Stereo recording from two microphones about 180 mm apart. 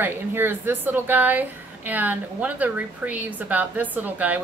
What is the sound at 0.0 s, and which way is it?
A woman's voice, 10° right (ahead or behind).